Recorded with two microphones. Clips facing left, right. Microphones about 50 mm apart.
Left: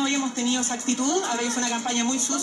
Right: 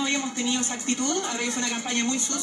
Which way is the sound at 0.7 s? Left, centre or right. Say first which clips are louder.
Left 3 dB; left.